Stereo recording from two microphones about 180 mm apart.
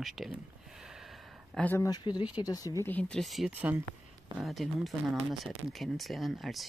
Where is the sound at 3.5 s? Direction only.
10° right (ahead or behind).